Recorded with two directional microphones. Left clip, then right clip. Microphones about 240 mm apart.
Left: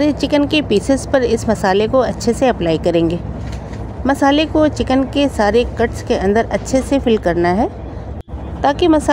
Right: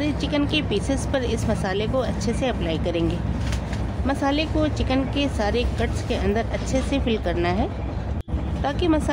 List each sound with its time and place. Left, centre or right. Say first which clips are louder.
0.0 s speech: left 10 dB; left